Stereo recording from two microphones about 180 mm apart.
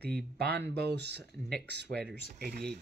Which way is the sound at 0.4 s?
65° right (ahead or behind).